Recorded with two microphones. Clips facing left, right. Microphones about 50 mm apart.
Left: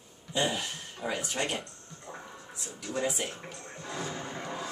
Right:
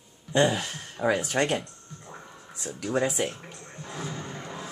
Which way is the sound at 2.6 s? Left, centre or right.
Right.